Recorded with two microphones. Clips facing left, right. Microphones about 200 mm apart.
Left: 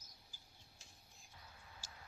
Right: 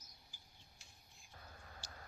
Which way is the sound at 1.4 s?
50° right (ahead or behind).